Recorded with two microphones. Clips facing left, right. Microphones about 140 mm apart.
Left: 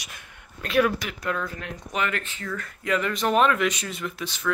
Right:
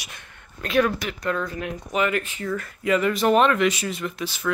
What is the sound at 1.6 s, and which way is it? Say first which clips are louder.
Speech: right 5 dB; 10° right (ahead or behind).